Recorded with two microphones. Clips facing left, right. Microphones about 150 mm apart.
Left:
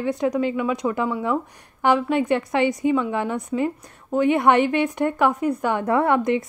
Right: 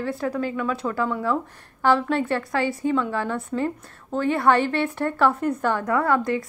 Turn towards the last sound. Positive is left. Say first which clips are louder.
# left 3 dB
turn(degrees=20)  # may be behind; listen again after turning